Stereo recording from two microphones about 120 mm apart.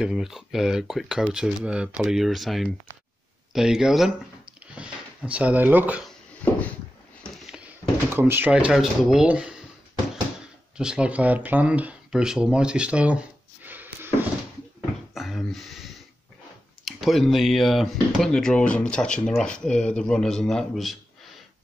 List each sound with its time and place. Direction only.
0.0 s speech: 5° right (ahead or behind)
7.5 s drawer open or close: 15° right (ahead or behind)
8.5 s speech: 10° right (ahead or behind)
10.8 s speech: 5° right (ahead or behind)
15.1 s a sound: centre (ahead or behind)
16.8 s speech: centre (ahead or behind)